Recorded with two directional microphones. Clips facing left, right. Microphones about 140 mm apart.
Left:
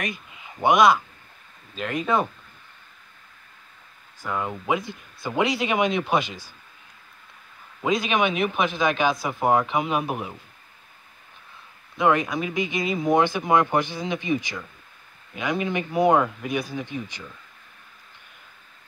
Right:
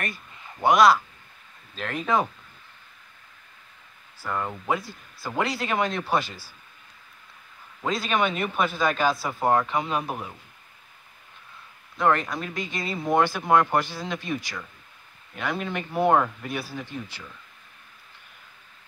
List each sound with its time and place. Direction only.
0.0 s a sound: 15° left (ahead or behind)
0.6 s speech: centre (ahead or behind)
2.0 s speech: 5° right (ahead or behind)
4.3 s speech: 5° left (ahead or behind)
6.0 s speech: 20° left (ahead or behind)
8.1 s speech: 10° left (ahead or behind)
8.6 s speech: centre (ahead or behind)
9.8 s speech: 20° left (ahead or behind)
12.1 s speech: 5° left (ahead or behind)
12.5 s speech: 15° left (ahead or behind)
13.0 s speech: centre (ahead or behind)
16.5 s speech: 5° right (ahead or behind)